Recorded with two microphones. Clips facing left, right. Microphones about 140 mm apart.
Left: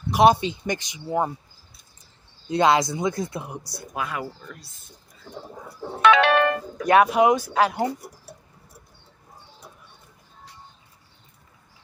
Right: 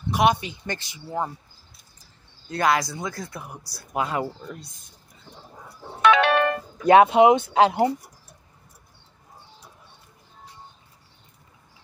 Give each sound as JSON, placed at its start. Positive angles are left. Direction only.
{"t": 0.2, "sound": "speech", "side_deg": 30}
{"t": 0.7, "sound": "speech", "side_deg": 15}
{"t": 2.4, "sound": "speech", "side_deg": 20}
{"t": 3.9, "sound": "speech", "side_deg": -25}
{"t": 6.0, "sound": "music", "side_deg": 90}
{"t": 6.8, "sound": "speech", "side_deg": -25}